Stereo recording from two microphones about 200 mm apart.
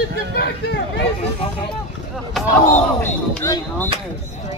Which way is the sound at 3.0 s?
15° left (ahead or behind).